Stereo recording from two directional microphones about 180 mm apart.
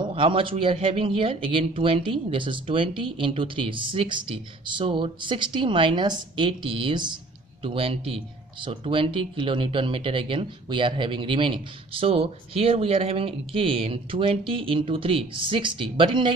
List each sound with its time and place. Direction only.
0.0 s speech: 30° right (ahead or behind)